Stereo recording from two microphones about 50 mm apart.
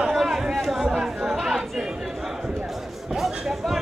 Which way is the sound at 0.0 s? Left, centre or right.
Centre.